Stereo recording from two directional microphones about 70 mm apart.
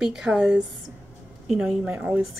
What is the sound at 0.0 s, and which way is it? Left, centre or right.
A woman's voice, centre.